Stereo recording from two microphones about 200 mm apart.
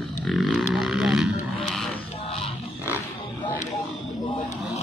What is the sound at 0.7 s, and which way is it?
Vehicle, centre (ahead or behind).